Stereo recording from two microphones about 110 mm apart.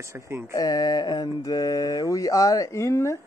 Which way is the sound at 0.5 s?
35° left (ahead or behind).